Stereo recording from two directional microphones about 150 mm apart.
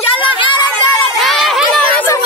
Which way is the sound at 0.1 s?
35° left (ahead or behind).